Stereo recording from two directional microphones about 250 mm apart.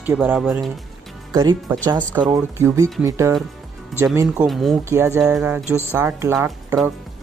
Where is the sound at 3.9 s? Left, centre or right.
Centre.